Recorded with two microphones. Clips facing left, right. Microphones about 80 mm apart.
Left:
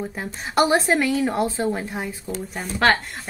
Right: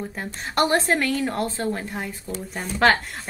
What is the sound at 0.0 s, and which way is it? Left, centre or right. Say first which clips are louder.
A woman's voice: left 2 dB; centre.